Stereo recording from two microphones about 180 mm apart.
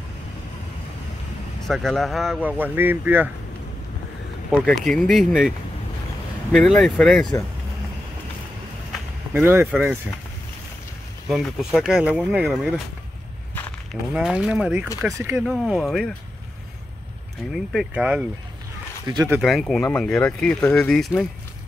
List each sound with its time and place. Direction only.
1.7 s speech: centre (ahead or behind)
2.5 s speech: 10° right (ahead or behind)
4.5 s speech: centre (ahead or behind)
6.5 s speech: centre (ahead or behind)
9.3 s speech: 10° right (ahead or behind)
11.2 s speech: centre (ahead or behind)
14.1 s speech: 5° right (ahead or behind)
15.4 s speech: centre (ahead or behind)
17.6 s speech: 5° right (ahead or behind)
19.0 s speech: 20° right (ahead or behind)
19.4 s speech: centre (ahead or behind)